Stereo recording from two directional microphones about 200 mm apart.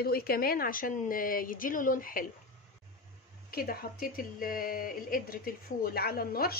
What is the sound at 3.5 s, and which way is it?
A woman's voice, 45° left (ahead or behind).